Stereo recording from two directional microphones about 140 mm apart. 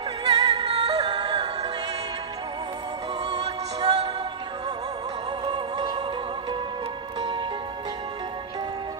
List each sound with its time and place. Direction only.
0.2 s music: 30° right (ahead or behind)
0.7 s music: 45° right (ahead or behind)
3.3 s music: 45° right (ahead or behind)
5.4 s music: 35° right (ahead or behind)
7.2 s music: 35° right (ahead or behind)